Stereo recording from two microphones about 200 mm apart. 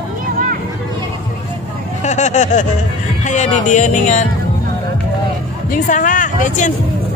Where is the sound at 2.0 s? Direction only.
35° left (ahead or behind).